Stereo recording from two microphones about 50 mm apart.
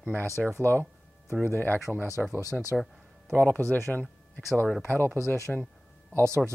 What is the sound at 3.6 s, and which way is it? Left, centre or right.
Speech, right.